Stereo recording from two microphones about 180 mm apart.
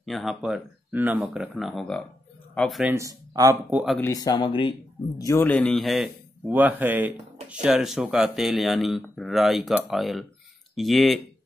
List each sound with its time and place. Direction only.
0.0 s speech: centre (ahead or behind)
2.9 s speech: 20° right (ahead or behind)
3.7 s speech: centre (ahead or behind)
4.0 s speech: 20° left (ahead or behind)
5.2 s speech: 15° left (ahead or behind)